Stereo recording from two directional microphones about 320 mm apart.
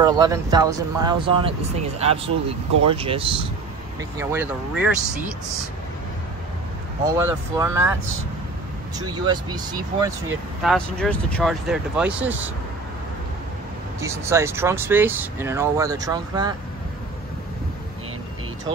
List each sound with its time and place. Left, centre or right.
0.0 s speech: centre
7.2 s speech: centre
8.9 s speech: centre
10.6 s speech: centre
14.0 s speech: centre